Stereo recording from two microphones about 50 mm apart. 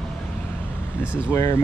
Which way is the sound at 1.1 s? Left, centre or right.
Left.